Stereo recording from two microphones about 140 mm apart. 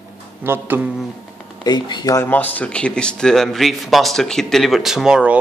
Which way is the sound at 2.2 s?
15° left (ahead or behind).